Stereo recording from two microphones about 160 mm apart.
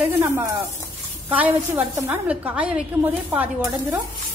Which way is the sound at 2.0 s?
5° right (ahead or behind).